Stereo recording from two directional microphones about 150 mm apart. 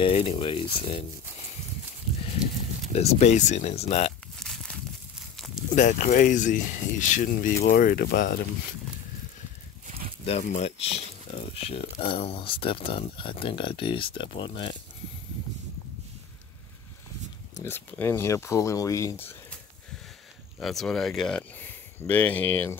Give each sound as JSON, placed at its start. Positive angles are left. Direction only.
{"t": 0.0, "sound": "speech", "side_deg": 40}
{"t": 2.9, "sound": "speech", "side_deg": 45}
{"t": 4.4, "sound": "crumpling", "side_deg": 5}
{"t": 5.8, "sound": "speech", "side_deg": 55}
{"t": 10.4, "sound": "speech", "side_deg": 45}
{"t": 17.6, "sound": "speech", "side_deg": 15}
{"t": 20.5, "sound": "speech", "side_deg": 0}